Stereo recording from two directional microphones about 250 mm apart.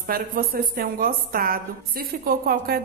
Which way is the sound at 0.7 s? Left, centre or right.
Right.